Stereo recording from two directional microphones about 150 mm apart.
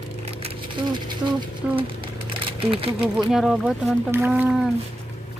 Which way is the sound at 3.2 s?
Centre (ahead or behind).